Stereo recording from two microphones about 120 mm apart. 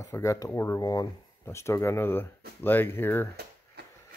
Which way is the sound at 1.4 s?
25° left (ahead or behind).